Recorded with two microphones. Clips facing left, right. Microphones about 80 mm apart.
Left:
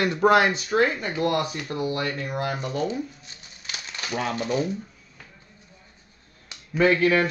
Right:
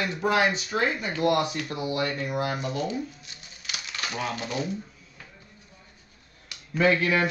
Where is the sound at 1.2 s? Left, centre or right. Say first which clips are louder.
Right 1 dB; left.